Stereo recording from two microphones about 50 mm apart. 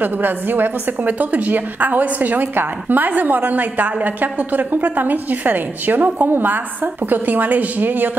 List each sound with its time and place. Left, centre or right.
0.0 s a woman's voice: right